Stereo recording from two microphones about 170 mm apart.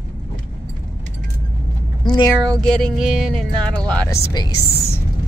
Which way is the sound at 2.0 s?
25° left (ahead or behind).